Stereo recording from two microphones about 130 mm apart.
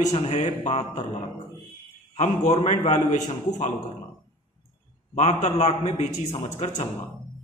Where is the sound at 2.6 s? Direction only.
60° left (ahead or behind).